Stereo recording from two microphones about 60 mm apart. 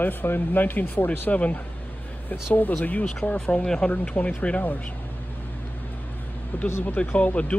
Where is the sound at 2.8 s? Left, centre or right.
Left.